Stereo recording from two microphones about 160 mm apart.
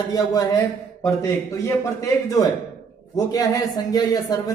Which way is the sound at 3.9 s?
25° left (ahead or behind).